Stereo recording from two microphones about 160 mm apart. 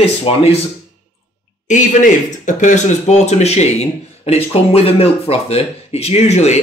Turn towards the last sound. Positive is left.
turn(degrees=45)  # may be behind; listen again after turning